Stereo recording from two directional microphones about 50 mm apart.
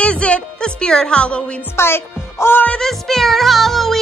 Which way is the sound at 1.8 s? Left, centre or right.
Left.